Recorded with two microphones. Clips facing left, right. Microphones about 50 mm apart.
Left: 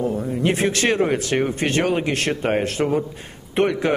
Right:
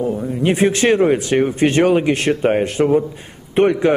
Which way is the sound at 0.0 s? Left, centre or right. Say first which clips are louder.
Right 3 dB; centre.